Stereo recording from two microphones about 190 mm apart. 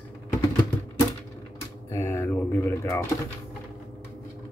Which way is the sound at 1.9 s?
15° left (ahead or behind).